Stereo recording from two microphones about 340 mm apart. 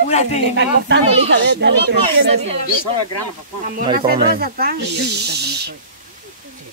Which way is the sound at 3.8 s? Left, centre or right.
Centre.